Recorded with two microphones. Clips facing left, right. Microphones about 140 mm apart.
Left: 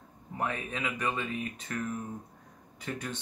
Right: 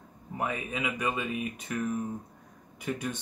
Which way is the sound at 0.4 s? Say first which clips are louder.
Right 1 dB; 10° right (ahead or behind).